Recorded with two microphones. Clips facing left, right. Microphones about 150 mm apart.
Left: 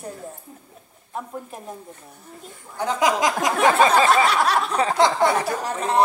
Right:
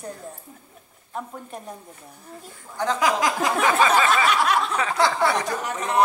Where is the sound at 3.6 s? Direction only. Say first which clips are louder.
Left 4 dB; 35° left (ahead or behind).